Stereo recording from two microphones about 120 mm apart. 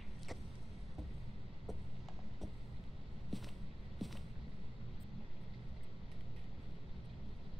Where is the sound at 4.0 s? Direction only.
Centre (ahead or behind).